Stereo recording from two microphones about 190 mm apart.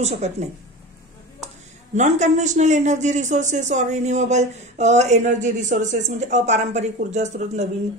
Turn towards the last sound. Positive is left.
turn(degrees=-40)  # may be behind; listen again after turning